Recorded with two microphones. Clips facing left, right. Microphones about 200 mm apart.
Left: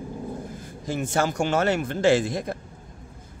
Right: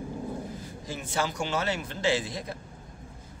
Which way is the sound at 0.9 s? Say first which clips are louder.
Left 7 dB; 45° left (ahead or behind).